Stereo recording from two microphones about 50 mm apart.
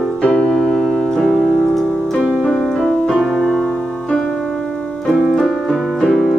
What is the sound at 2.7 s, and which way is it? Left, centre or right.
Piano, centre.